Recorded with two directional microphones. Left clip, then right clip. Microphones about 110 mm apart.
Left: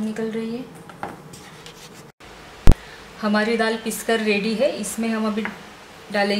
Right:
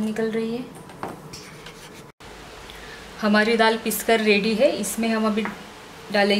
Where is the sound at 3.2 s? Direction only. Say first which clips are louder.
Right 2 dB; 20° right (ahead or behind).